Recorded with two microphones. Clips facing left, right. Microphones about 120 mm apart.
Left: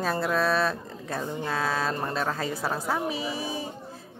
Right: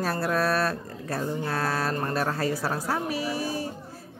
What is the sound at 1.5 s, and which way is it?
Mantra, 10° right (ahead or behind).